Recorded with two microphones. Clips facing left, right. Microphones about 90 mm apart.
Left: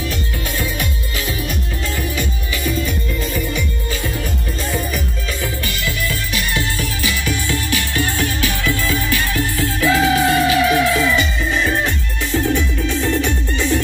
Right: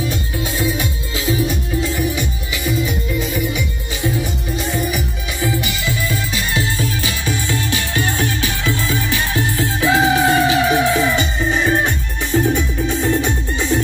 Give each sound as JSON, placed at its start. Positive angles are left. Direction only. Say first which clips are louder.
{"t": 0.6, "sound": "music", "louder": "right 3 dB", "side_deg": -20}